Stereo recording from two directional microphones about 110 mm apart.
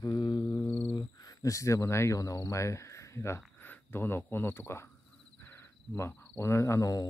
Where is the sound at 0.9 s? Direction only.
35° left (ahead or behind).